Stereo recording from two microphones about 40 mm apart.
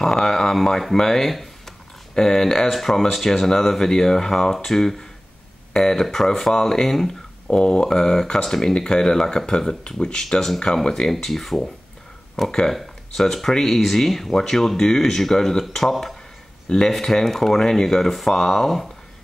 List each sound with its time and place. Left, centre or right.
0.0 s speech: centre
2.1 s speech: centre
12.4 s speech: left
12.7 s speech: centre
16.6 s speech: centre